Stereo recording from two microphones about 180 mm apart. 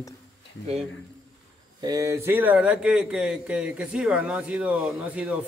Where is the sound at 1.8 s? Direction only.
20° right (ahead or behind).